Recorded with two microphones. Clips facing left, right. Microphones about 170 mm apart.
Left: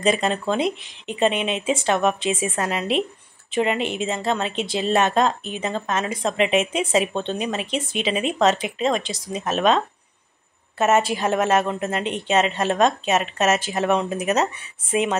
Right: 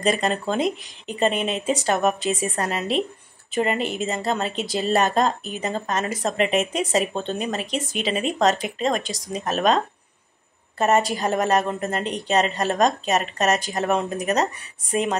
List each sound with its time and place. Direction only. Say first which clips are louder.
0.0 s a woman's voice: left 1 dB; centre (ahead or behind)
8.5 s speech: left 1 dB; 40° right (ahead or behind)
9.4 s a woman's voice: left 1 dB; centre (ahead or behind)
10.8 s a woman's voice: left 1 dB; centre (ahead or behind)